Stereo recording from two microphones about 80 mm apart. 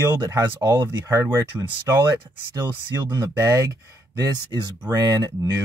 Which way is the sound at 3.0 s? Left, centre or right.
Right.